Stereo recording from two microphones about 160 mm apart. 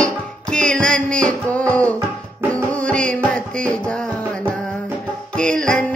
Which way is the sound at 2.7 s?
5° left (ahead or behind).